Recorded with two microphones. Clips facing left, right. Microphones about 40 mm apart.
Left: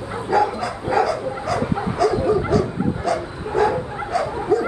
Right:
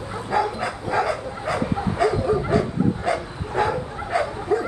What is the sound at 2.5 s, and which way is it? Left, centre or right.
Bow-wow, right.